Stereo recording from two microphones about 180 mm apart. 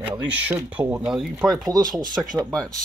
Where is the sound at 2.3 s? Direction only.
20° right (ahead or behind).